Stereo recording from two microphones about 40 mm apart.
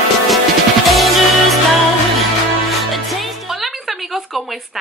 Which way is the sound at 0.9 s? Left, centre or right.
Centre.